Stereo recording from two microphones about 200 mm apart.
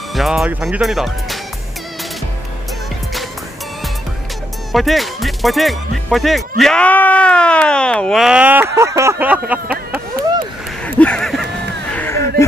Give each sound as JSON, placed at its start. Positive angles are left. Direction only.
{"t": 0.1, "sound": "speech", "side_deg": 0}
{"t": 4.7, "sound": "speech", "side_deg": 0}
{"t": 10.8, "sound": "a sound", "side_deg": 5}
{"t": 11.9, "sound": "music", "side_deg": 10}